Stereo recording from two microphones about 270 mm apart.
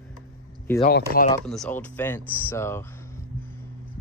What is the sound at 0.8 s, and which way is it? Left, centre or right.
Speech, left.